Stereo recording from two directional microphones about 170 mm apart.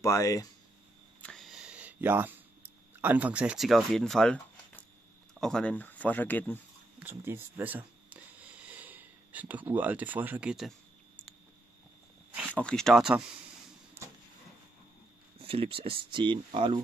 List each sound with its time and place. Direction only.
0.0 s speech: 20° left (ahead or behind)
1.2 s a sound: centre (ahead or behind)
3.0 s speech: 10° right (ahead or behind); by 6.6 s 10° left (ahead or behind)
7.0 s a sound: 10° right (ahead or behind)
12.5 s speech: 5° left (ahead or behind)
15.4 s speech: 35° right (ahead or behind)